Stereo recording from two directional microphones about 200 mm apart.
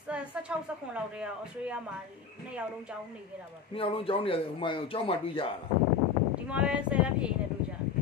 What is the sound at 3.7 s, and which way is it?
Speech, 25° left (ahead or behind).